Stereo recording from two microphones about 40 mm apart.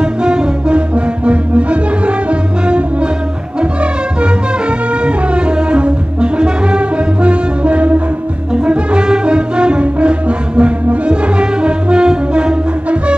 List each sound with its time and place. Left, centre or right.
0.0 s music: right
4.2 s music: right